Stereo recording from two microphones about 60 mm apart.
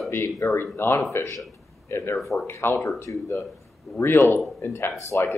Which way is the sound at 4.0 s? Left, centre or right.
Left.